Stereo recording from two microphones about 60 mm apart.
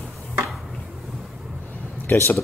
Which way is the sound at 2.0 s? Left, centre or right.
Left.